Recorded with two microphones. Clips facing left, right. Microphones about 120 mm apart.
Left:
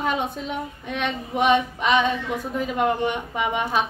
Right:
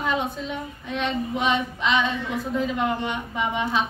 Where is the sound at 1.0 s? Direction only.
55° left (ahead or behind).